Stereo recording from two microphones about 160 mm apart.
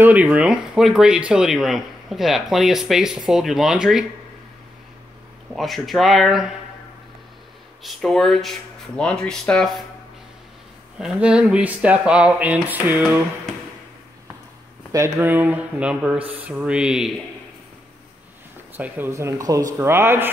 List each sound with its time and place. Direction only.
0.0 s speech: 10° right (ahead or behind)
5.5 s speech: centre (ahead or behind)
7.8 s speech: centre (ahead or behind)
11.0 s speech: 5° right (ahead or behind)
15.1 s speech: 10° right (ahead or behind)
18.8 s speech: 15° right (ahead or behind)